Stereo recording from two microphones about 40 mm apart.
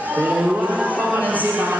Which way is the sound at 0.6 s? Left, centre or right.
Right.